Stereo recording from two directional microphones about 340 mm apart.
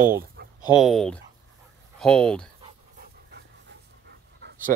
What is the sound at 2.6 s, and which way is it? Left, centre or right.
Dog, right.